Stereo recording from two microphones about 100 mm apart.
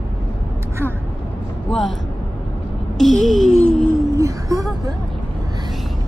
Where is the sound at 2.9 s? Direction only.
5° left (ahead or behind).